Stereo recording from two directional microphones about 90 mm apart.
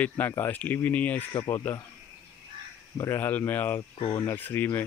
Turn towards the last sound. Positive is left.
turn(degrees=25)  # may be behind; listen again after turning